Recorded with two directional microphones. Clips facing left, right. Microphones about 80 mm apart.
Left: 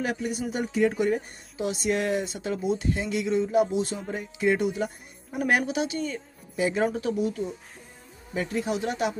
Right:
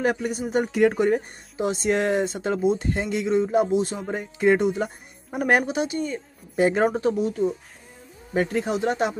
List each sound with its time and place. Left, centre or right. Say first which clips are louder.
0.0 s speech: right 5 dB; right
4.1 s a woman's voice: right 6 dB; right
5.6 s speech: right 3 dB; right
6.5 s speech: right 5 dB; right
6.9 s speech: right 4 dB; right
8.6 s speech: right 4 dB; right